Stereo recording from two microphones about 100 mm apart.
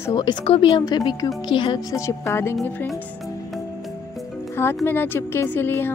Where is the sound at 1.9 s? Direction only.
30° left (ahead or behind).